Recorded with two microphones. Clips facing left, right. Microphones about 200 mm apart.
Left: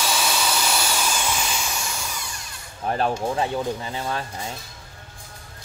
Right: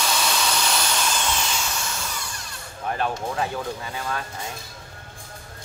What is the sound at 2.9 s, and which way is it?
Speech, 30° left (ahead or behind).